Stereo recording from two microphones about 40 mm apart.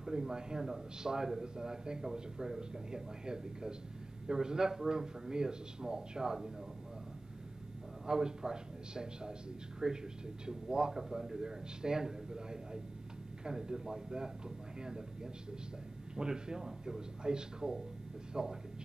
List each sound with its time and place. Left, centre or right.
0.0 s a man's voice: centre
8.1 s a man's voice: centre
16.2 s a man's voice: centre